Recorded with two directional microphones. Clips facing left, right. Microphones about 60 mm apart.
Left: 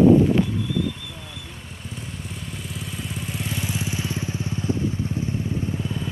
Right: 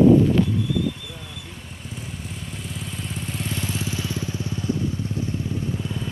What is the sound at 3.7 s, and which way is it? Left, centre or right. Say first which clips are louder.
Motorcycle: even; left.